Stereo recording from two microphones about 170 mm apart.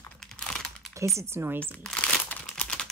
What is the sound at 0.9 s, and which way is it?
Speech, 15° right (ahead or behind).